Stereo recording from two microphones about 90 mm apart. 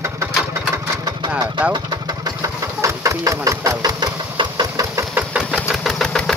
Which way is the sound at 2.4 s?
35° right (ahead or behind).